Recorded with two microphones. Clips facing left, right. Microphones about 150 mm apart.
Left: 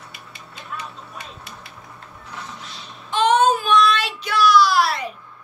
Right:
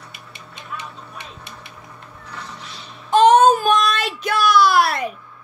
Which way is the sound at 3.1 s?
40° right (ahead or behind).